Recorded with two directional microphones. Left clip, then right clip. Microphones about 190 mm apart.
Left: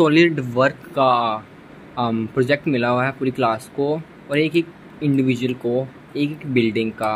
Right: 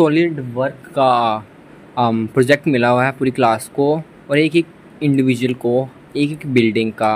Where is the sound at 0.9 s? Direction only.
10° right (ahead or behind).